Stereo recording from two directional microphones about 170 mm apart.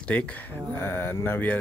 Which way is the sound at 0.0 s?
5° left (ahead or behind).